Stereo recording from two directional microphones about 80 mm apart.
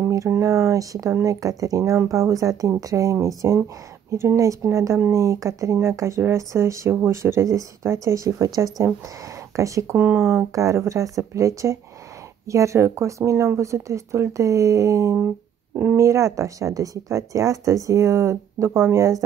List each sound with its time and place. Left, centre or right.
0.4 s speech: right
9.6 s speech: right
15.1 s speech: centre
16.0 s speech: right